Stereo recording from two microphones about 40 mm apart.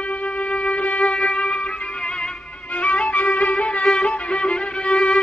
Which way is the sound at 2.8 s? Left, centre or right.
Left.